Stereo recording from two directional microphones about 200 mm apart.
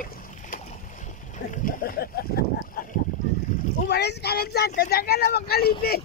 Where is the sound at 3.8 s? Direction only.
55° left (ahead or behind).